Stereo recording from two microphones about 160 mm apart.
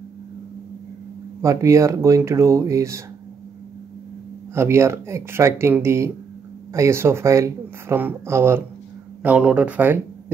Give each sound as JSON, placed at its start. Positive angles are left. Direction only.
{"t": 1.4, "sound": "speech", "side_deg": -20}
{"t": 4.6, "sound": "speech", "side_deg": -15}